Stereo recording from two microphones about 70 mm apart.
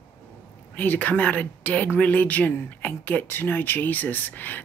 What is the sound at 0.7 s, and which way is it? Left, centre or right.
Speech, left.